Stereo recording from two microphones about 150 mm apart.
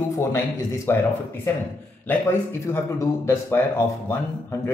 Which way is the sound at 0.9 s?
15° left (ahead or behind).